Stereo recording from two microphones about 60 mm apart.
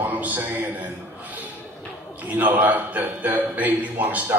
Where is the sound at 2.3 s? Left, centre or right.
Right.